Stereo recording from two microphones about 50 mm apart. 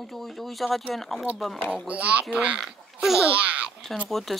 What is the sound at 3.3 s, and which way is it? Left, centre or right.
Babbling, right.